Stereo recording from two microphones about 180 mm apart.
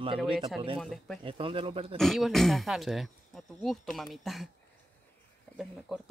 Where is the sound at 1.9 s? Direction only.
Centre (ahead or behind).